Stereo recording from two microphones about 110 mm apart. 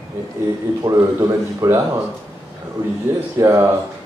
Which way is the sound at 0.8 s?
30° right (ahead or behind).